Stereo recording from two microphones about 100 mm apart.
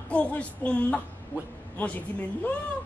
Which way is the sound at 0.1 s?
15° left (ahead or behind).